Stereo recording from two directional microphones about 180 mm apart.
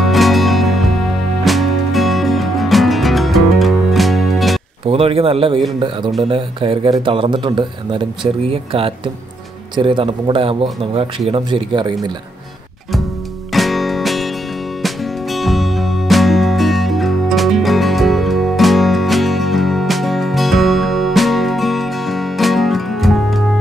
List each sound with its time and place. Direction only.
0.0 s music: centre (ahead or behind)
4.8 s a man's voice: 30° right (ahead or behind)
13.5 s music: centre (ahead or behind)